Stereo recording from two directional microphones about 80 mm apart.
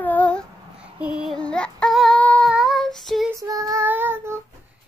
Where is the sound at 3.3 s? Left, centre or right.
Right.